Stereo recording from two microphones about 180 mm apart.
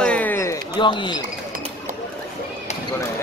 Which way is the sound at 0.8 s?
25° left (ahead or behind).